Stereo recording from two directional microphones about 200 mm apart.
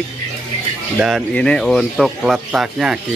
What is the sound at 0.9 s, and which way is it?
A man's voice, centre (ahead or behind).